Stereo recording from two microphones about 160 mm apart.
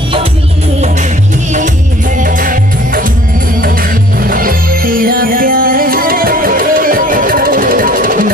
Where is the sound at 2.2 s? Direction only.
55° right (ahead or behind).